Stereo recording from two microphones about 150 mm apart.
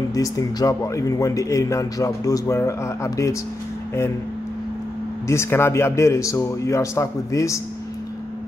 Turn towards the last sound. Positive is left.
turn(degrees=20)  # may be behind; listen again after turning